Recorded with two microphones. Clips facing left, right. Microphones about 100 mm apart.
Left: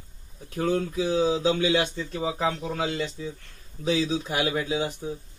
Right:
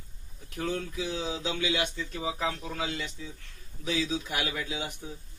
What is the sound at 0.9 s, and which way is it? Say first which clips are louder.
Speech: left 10 dB; 35° left (ahead or behind).